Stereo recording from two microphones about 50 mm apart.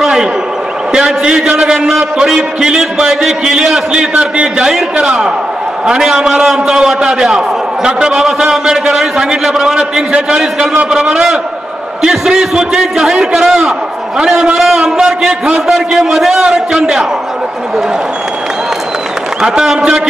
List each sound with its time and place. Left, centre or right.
0.0 s a sound: centre
0.9 s a man's voice: centre
10.7 s a man's voice: right
11.0 s a man's voice: centre
19.4 s a man's voice: centre